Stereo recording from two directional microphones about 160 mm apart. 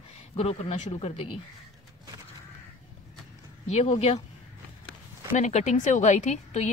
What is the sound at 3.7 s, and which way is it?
Speech, 45° left (ahead or behind).